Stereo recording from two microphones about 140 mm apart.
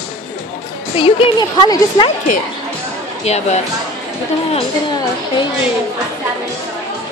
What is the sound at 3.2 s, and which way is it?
Speech, 50° left (ahead or behind).